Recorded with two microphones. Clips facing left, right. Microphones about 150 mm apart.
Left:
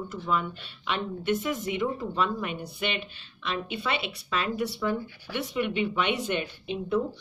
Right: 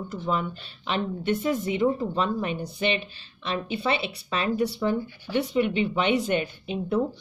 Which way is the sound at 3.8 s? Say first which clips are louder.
Right 4 dB; 35° right (ahead or behind).